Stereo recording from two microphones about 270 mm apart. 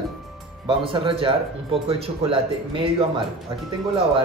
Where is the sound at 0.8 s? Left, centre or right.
Centre.